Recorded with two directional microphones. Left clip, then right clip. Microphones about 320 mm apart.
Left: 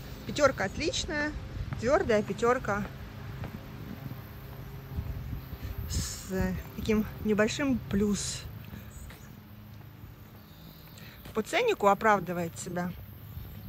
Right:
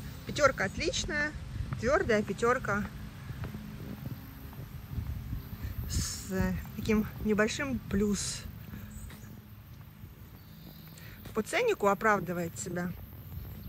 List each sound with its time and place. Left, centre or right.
0.3 s speech: centre
5.9 s a woman's voice: centre
11.3 s speech: centre